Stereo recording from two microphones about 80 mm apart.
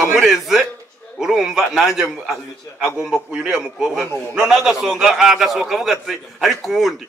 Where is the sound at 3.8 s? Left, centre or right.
Centre.